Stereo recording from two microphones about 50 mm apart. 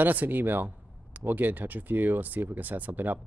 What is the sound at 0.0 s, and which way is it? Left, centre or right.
Speech, right.